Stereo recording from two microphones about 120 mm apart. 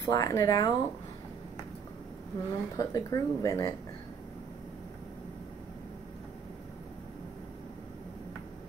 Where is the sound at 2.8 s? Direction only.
30° left (ahead or behind).